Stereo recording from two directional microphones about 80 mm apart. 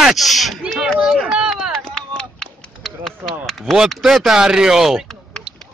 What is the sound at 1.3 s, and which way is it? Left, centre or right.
Run, centre.